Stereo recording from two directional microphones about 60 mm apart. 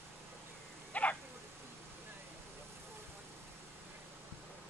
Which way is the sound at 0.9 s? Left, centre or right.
Left.